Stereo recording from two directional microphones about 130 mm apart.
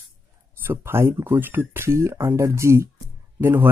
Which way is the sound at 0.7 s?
20° right (ahead or behind).